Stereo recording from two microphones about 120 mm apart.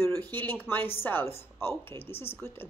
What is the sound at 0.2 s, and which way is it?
Speech, 15° left (ahead or behind).